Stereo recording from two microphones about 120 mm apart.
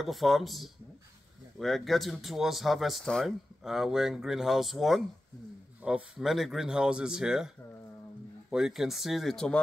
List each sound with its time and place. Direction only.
0.0 s speech: centre (ahead or behind)